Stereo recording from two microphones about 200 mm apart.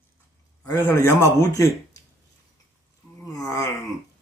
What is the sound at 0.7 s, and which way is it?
A man's voice, 10° left (ahead or behind).